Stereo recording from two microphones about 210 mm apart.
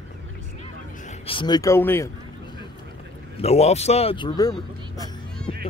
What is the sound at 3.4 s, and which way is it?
A man's voice, 30° left (ahead or behind).